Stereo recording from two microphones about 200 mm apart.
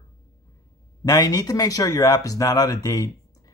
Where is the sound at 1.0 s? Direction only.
20° left (ahead or behind).